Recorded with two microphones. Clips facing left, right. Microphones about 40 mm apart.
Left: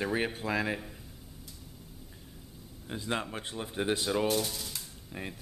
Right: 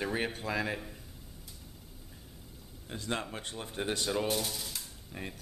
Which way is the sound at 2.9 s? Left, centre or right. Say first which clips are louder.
Left 2 dB; centre.